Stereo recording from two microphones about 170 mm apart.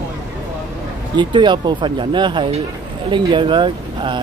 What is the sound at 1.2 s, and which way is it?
Speech, 25° right (ahead or behind).